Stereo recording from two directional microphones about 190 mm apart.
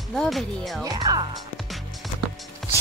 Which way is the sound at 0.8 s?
20° right (ahead or behind).